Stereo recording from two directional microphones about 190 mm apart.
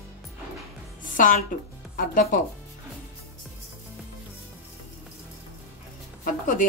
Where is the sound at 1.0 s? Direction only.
45° left (ahead or behind).